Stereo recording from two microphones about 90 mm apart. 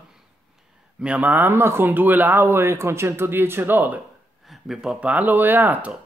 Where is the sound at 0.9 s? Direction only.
15° right (ahead or behind).